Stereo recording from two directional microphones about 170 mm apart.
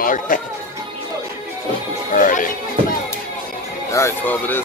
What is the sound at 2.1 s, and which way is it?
Music, 50° left (ahead or behind).